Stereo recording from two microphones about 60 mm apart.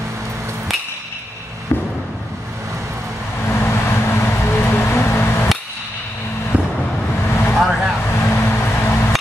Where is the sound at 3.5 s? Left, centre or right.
Left.